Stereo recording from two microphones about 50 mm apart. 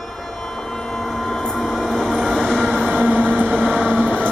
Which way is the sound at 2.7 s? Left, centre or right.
Centre.